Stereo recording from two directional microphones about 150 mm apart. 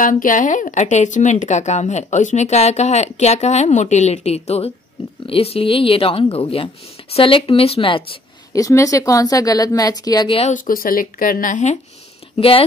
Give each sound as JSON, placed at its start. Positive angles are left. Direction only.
{"t": 0.0, "sound": "speech", "side_deg": 60}
{"t": 8.5, "sound": "speech", "side_deg": 20}
{"t": 10.5, "sound": "speech", "side_deg": 70}
{"t": 12.4, "sound": "speech", "side_deg": 35}